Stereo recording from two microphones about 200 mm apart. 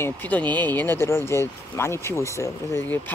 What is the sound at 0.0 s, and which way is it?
Speech, 10° left (ahead or behind).